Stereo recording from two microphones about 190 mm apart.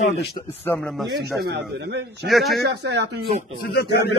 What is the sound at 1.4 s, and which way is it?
Speech, 60° right (ahead or behind).